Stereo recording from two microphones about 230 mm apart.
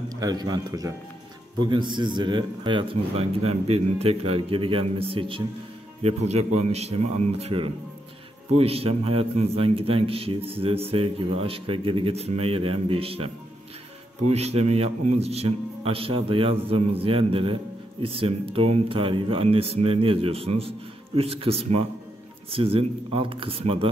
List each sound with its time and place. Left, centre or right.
0.1 s a man's voice: centre
14.3 s a man's voice: right